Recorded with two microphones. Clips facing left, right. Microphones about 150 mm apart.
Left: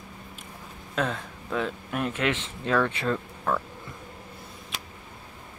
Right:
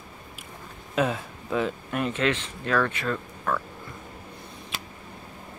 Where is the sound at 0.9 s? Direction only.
5° right (ahead or behind).